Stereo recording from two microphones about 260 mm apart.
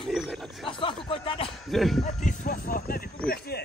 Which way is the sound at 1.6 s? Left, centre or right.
Centre.